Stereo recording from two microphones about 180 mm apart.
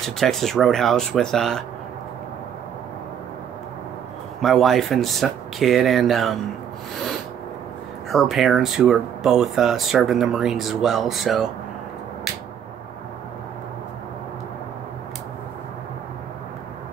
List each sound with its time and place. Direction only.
0.0 s speech: centre (ahead or behind)
4.4 s speech: centre (ahead or behind)
8.1 s speech: centre (ahead or behind)